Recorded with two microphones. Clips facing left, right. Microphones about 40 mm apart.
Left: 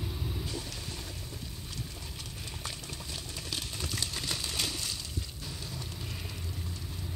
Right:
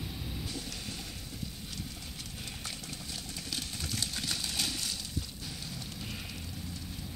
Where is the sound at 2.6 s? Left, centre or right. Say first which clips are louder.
Left 1 dB; left.